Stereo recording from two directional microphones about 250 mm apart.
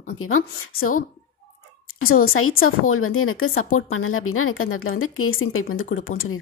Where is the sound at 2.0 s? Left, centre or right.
Left.